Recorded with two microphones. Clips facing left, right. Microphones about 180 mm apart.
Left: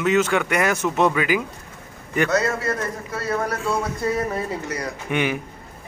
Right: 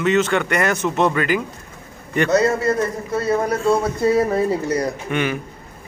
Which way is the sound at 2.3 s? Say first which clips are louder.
Right 5 dB; 25° right (ahead or behind).